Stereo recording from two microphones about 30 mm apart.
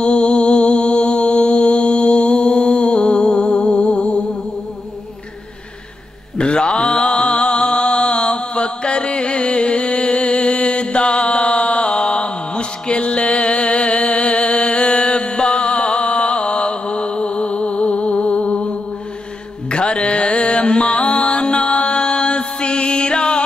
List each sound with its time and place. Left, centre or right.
0.0 s a sound: left
0.4 s music: left
6.3 s mantra: left
13.7 s music: left
19.7 s mantra: left